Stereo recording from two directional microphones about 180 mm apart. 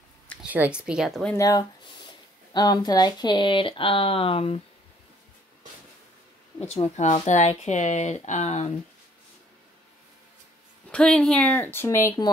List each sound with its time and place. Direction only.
0.4 s speech: 5° right (ahead or behind)
1.3 s speech: 20° left (ahead or behind)
6.6 s speech: 35° left (ahead or behind)
10.9 s speech: 5° left (ahead or behind)